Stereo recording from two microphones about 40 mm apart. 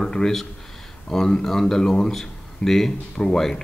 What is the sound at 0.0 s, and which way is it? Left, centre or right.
A man's voice, centre.